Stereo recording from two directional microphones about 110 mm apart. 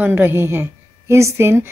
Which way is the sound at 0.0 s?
20° right (ahead or behind).